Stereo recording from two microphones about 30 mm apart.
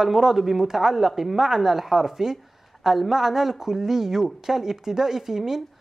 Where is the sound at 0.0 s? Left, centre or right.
Centre.